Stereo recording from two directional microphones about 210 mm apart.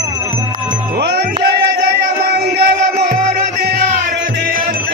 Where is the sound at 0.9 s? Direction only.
50° right (ahead or behind).